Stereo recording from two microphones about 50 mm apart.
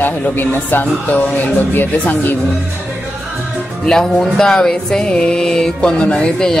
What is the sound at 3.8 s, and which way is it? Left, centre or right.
Music, centre.